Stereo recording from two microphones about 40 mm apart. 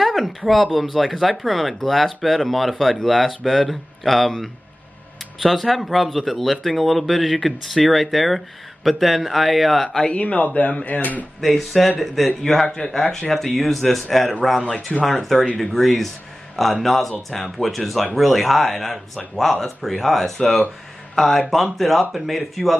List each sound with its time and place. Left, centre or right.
0.0 s a sound: centre
0.7 s speech: centre
10.1 s speech: left
11.4 s speech: centre
12.8 s speech: centre
13.3 s speech: centre